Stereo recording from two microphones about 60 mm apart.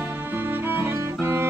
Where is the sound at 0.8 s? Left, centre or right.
Right.